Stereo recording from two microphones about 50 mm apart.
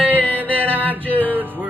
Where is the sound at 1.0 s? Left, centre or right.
Left.